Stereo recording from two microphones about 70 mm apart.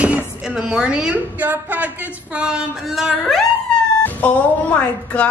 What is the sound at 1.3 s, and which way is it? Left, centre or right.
Speech, right.